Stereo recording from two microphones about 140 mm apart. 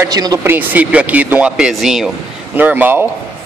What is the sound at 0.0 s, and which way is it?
Speech, 25° right (ahead or behind).